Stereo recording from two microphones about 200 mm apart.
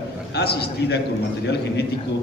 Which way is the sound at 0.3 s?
55° left (ahead or behind).